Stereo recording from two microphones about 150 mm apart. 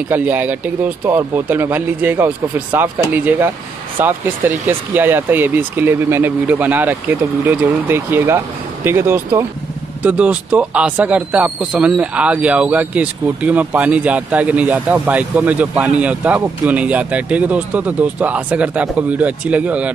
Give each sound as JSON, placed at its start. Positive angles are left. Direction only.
{"t": 0.1, "sound": "speech", "side_deg": -10}